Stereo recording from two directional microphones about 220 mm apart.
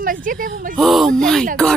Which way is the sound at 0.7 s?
Centre (ahead or behind).